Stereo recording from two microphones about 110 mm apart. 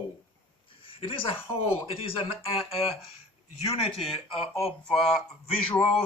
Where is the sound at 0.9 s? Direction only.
50° left (ahead or behind).